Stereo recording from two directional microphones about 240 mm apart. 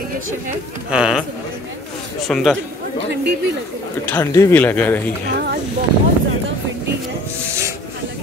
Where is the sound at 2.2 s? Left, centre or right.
Centre.